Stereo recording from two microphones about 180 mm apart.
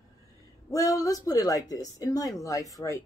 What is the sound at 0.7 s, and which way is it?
Speech, 20° left (ahead or behind).